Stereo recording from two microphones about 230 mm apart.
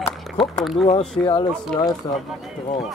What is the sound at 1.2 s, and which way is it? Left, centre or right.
Speech, centre.